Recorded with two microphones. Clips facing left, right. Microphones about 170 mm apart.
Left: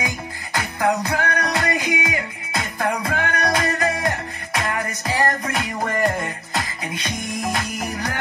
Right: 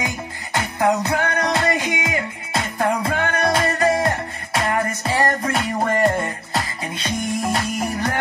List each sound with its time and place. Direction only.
0.0 s music: 25° right (ahead or behind)